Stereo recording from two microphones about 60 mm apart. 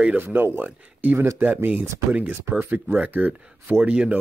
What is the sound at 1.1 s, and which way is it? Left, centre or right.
Speech, right.